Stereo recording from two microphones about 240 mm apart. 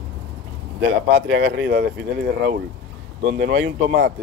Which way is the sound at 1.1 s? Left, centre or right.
Right.